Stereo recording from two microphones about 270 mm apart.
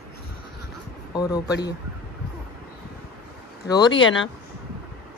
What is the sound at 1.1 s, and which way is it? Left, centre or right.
Speech, centre.